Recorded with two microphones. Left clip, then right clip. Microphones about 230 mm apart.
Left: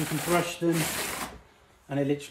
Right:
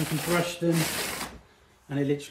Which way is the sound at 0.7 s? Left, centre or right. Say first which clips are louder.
Right 1 dB; centre.